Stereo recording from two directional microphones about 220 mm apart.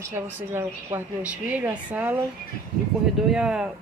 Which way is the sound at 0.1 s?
10° right (ahead or behind).